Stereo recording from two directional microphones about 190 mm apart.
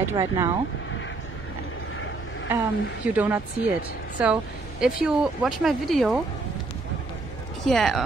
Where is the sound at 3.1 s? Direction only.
10° right (ahead or behind).